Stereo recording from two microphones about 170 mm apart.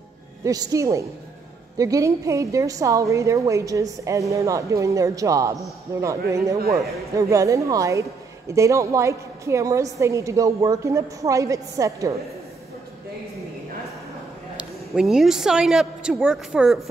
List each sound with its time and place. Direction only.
0.4 s a woman's voice: 20° right (ahead or behind)
14.6 s a woman's voice: 5° right (ahead or behind)